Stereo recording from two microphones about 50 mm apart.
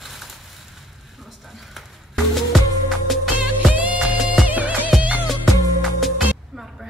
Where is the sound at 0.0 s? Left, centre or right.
Centre.